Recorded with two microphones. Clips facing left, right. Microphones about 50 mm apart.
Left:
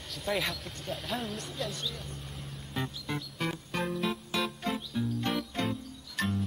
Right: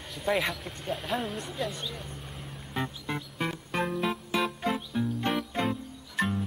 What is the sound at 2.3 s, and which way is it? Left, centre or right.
Music, centre.